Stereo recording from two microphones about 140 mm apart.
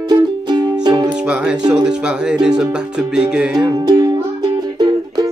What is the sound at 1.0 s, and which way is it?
Music, 5° right (ahead or behind).